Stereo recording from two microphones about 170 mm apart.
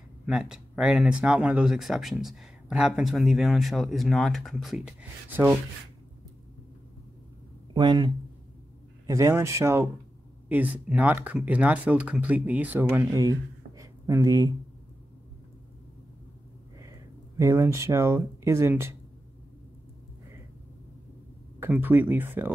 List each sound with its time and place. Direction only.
0.3 s speech: 5° right (ahead or behind)
7.7 s speech: 25° right (ahead or behind)
17.4 s speech: 15° right (ahead or behind)
21.5 s speech: 10° right (ahead or behind)